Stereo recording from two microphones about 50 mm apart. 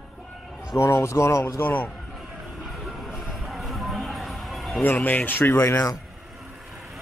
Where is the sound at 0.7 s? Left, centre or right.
Left.